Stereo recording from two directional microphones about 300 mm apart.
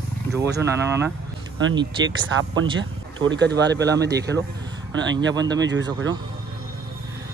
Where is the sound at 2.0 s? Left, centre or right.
Right.